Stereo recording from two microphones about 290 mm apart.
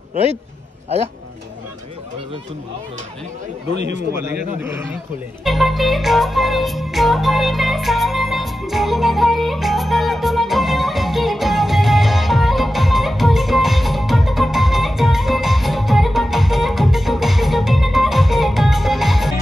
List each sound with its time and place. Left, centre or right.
0.1 s a man's voice: right
4.1 s a man's voice: centre
5.4 s music: centre